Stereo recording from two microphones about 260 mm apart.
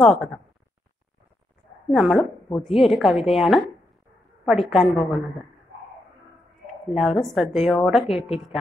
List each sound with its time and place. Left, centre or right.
0.0 s a woman's voice: centre
1.9 s a woman's voice: centre
6.9 s a woman's voice: centre
8.1 s speech: left